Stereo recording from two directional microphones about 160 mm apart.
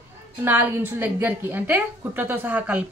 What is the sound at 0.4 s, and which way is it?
A woman's voice, 10° right (ahead or behind).